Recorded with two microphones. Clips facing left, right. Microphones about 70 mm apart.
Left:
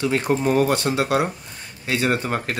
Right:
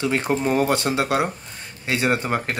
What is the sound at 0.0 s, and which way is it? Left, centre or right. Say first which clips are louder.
Speech: left 1 dB; right.